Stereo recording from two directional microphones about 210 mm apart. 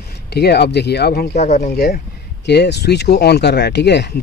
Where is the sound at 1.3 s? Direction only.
35° left (ahead or behind).